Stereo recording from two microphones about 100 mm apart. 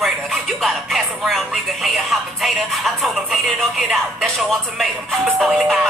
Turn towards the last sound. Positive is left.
turn(degrees=0)  # may be behind; listen again after turning